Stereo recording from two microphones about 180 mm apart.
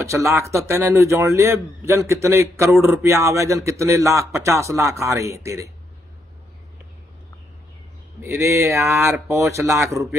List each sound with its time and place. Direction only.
0.0 s speech: 15° right (ahead or behind)
8.2 s speech: 15° right (ahead or behind)